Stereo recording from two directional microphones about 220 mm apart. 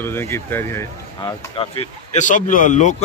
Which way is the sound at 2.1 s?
35° left (ahead or behind).